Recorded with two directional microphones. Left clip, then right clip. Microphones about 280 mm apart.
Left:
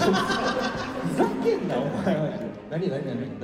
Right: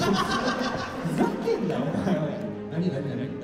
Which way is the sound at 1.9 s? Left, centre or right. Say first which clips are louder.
Left 2 dB; centre.